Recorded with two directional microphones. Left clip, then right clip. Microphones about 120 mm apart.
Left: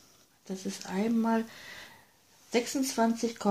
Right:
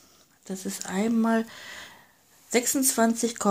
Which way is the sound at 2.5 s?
40° right (ahead or behind).